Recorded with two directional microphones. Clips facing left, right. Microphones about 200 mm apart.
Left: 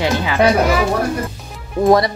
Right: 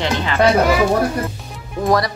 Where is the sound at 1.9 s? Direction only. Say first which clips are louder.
Left 4 dB; 25° left (ahead or behind).